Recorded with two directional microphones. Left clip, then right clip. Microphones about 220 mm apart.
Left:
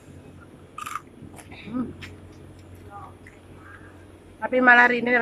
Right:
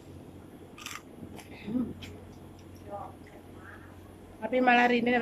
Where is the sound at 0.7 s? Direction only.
15° right (ahead or behind).